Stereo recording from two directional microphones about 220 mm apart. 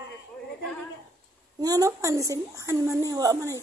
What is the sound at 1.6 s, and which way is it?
A woman's voice, 15° right (ahead or behind).